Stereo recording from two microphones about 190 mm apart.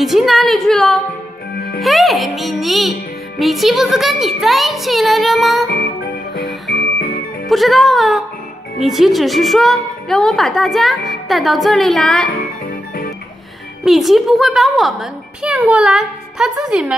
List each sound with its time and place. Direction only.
0.0 s a child's voice: centre (ahead or behind)
6.7 s music: 55° left (ahead or behind)
7.4 s a child's voice: centre (ahead or behind)
13.8 s a child's voice: centre (ahead or behind)